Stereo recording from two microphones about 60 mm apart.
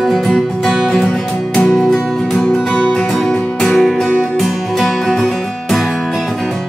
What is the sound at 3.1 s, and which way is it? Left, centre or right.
Music, centre.